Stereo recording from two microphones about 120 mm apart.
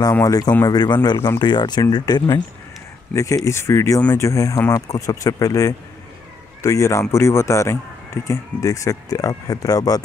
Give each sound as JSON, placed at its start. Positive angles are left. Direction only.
{"t": 0.1, "sound": "speech", "side_deg": 25}